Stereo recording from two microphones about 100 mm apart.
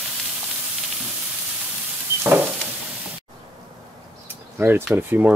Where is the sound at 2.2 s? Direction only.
20° right (ahead or behind).